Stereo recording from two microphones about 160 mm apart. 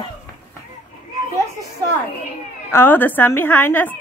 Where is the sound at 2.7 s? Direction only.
15° left (ahead or behind).